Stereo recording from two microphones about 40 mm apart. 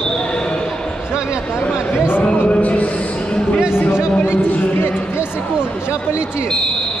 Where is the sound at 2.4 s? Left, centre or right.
Left.